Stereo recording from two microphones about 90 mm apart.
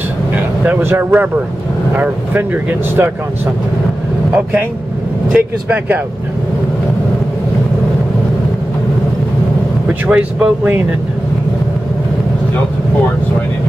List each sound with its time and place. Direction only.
0.3 s speech: 20° right (ahead or behind)
5.3 s speech: 15° right (ahead or behind)
10.0 s speech: 15° right (ahead or behind)